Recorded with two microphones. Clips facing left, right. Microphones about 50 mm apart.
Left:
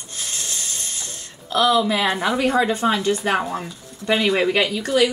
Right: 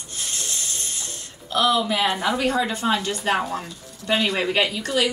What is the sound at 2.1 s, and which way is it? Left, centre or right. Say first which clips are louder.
A woman's voice: left 3 dB; left.